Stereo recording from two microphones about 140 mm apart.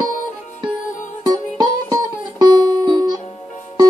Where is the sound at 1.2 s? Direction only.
30° right (ahead or behind).